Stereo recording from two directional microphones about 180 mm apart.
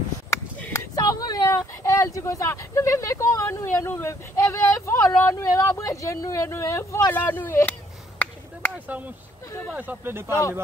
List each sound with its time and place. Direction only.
0.3 s speech: 20° left (ahead or behind)
8.7 s speech: 10° right (ahead or behind)